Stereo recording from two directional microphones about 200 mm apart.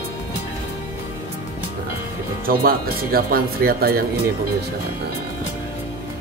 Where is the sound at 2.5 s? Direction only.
45° right (ahead or behind).